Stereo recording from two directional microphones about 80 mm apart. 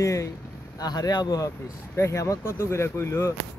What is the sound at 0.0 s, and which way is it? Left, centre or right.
Speech, left.